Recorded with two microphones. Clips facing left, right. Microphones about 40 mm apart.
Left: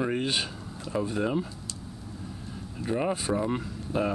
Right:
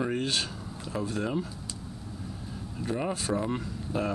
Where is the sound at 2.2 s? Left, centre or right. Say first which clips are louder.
Even; centre.